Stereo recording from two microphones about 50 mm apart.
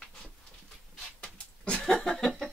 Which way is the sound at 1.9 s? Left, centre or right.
Centre.